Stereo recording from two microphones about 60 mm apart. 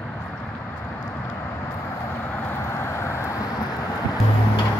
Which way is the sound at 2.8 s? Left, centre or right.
Left.